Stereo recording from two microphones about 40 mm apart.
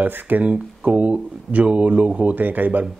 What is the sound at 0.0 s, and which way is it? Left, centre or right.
Speech, right.